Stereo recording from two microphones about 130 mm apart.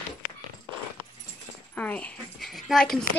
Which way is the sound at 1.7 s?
10° left (ahead or behind).